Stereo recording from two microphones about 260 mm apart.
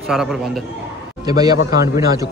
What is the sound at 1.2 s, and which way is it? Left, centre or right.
Speech, centre.